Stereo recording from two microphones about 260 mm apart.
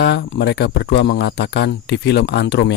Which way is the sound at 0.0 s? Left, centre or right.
Left.